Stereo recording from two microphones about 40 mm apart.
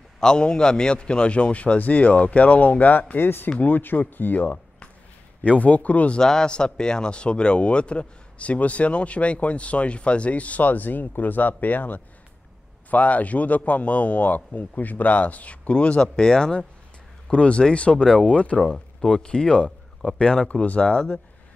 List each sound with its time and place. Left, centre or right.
0.2 s a man's voice: centre; by 4.6 s left
5.4 s speech: left
6.1 s speech: centre
16.0 s speech: centre
17.3 s a man's voice: left
18.6 s a man's voice: centre
20.4 s speech: left
20.8 s a man's voice: left